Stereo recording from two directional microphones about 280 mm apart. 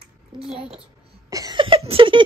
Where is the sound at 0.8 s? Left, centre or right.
Centre.